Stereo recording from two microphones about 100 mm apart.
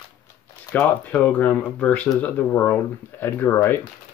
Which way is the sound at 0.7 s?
15° left (ahead or behind).